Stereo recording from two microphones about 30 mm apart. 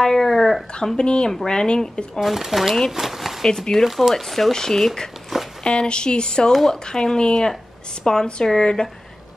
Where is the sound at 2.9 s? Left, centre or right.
Centre.